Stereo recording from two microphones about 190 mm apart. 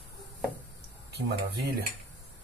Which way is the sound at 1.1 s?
60° right (ahead or behind).